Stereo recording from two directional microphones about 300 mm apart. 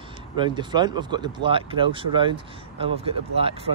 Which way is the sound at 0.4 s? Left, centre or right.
Centre.